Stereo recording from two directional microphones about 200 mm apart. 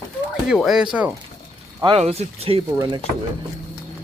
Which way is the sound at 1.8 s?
25° right (ahead or behind).